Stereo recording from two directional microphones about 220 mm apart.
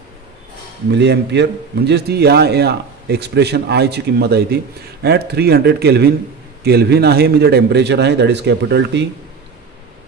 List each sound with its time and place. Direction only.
0.9 s a man's voice: 50° right (ahead or behind)